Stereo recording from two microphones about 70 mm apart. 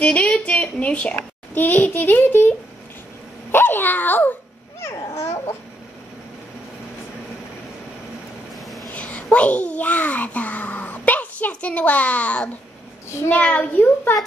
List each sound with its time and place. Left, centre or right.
0.0 s a woman's voice: centre
3.5 s a child's voice: left
4.7 s babbling: left
8.9 s babbling: centre
13.3 s a child's voice: centre